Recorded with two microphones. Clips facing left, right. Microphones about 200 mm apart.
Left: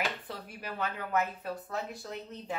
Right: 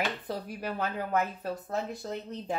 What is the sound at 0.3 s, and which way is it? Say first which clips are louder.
Speech: right 6 dB; 40° right (ahead or behind).